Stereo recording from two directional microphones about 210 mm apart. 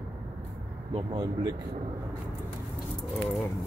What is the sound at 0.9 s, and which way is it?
Speech, 20° right (ahead or behind).